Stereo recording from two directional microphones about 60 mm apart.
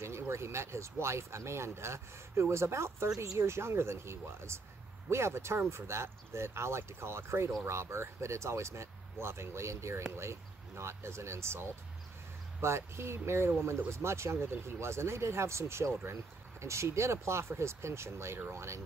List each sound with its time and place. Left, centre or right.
0.0 s speech: right